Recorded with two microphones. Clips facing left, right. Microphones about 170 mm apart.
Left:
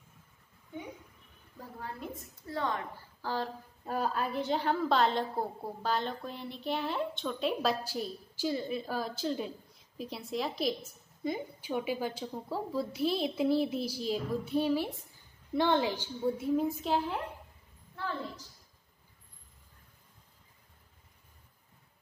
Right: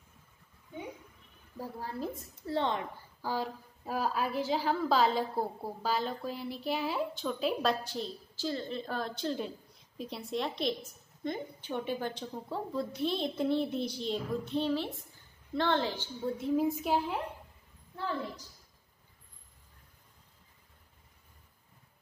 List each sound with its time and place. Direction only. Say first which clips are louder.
1.8 s a woman's voice: right 2 dB; 30° right (ahead or behind)
3.2 s a woman's voice: even; 10° right (ahead or behind)
16.6 s a woman's voice: right 1 dB; 10° right (ahead or behind)